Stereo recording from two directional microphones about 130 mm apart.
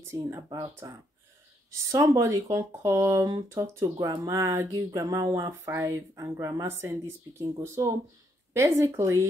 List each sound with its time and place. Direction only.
0.1 s speech: 25° right (ahead or behind)